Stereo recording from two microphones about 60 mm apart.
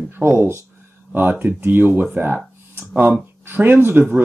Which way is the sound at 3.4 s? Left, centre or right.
Right.